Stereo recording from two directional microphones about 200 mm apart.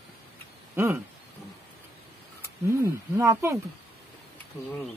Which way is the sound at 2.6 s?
15° right (ahead or behind).